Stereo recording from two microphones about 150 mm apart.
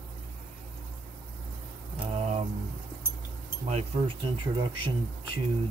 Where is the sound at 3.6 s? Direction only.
45° right (ahead or behind).